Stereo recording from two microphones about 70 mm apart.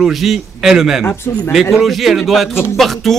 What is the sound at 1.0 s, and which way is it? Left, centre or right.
Speech, left.